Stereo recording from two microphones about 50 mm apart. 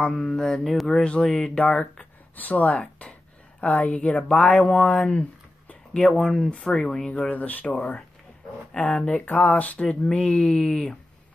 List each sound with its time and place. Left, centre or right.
0.2 s speech: centre
1.0 s speech: left
2.3 s speech: left; by 5.2 s centre
6.0 s speech: centre
6.4 s speech: left
7.3 s speech: left
8.7 s speech: centre
9.2 s speech: left
9.8 s speech: centre